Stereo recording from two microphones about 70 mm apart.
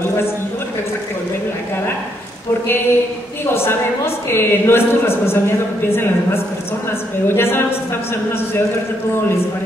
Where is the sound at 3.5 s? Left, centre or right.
Left.